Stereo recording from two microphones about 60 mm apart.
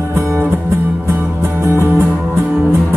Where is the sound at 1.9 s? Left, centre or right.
Right.